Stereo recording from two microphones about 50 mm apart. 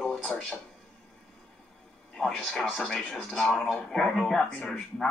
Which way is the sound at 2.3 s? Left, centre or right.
Centre.